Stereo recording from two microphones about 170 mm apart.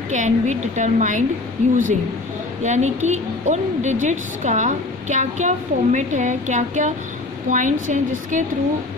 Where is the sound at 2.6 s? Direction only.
45° right (ahead or behind).